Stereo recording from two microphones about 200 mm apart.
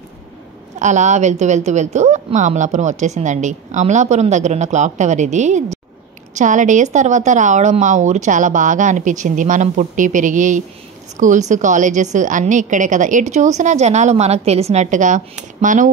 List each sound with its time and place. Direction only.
0.7 s a woman's voice: 35° right (ahead or behind)